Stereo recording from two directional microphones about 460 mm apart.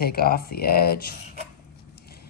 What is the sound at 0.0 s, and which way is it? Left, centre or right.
Speech, centre.